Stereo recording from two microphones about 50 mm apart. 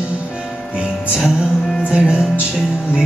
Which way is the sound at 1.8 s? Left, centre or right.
Centre.